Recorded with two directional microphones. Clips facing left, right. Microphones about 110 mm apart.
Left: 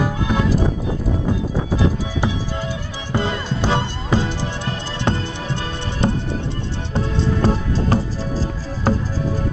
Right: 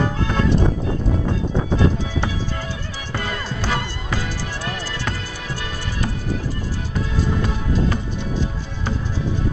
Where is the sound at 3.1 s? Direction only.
25° left (ahead or behind).